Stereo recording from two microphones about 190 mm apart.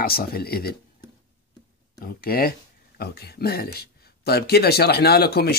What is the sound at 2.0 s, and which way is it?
Speech, 50° left (ahead or behind).